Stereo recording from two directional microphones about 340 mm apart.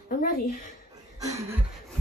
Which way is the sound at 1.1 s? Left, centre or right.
Centre.